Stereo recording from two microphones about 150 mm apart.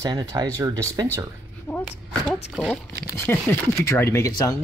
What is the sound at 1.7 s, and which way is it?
Speech, 10° left (ahead or behind).